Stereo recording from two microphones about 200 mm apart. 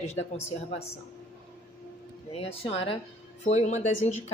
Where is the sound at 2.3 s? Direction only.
30° left (ahead or behind).